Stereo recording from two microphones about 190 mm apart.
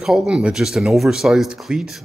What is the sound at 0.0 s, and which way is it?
Speech, 5° right (ahead or behind).